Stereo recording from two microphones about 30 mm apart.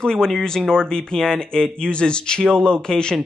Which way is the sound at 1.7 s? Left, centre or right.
Left.